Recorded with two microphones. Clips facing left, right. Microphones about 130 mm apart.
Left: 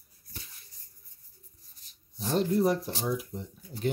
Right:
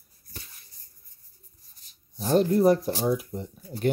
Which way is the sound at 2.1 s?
50° right (ahead or behind).